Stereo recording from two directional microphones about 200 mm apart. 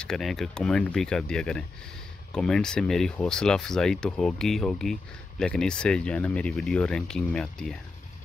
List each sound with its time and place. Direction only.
0.0 s speech: centre (ahead or behind)